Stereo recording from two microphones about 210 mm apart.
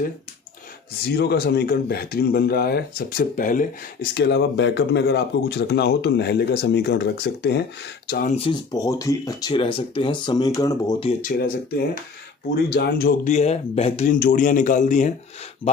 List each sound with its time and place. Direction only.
1.0 s speech: 50° left (ahead or behind)
4.1 s speech: 55° left (ahead or behind)
8.3 s speech: 30° left (ahead or behind)
8.7 s speech: 15° left (ahead or behind)
11.1 s speech: 35° left (ahead or behind)